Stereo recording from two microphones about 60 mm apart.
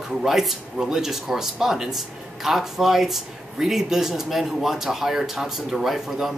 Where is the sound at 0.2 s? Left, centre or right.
Centre.